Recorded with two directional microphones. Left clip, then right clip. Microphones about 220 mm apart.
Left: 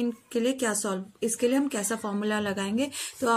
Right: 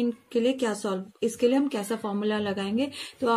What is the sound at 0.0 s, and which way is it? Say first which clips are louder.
Speech: right 2 dB; 20° left (ahead or behind).